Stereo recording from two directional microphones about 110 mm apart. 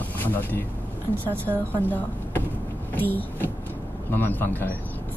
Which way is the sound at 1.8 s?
15° left (ahead or behind).